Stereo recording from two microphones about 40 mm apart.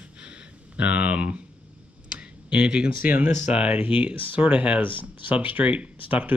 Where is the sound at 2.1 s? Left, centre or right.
Right.